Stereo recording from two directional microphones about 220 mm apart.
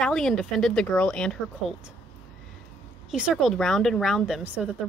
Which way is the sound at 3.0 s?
Centre (ahead or behind).